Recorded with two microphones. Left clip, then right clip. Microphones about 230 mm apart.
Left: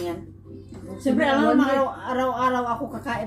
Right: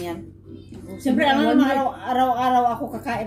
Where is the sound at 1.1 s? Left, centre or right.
Right.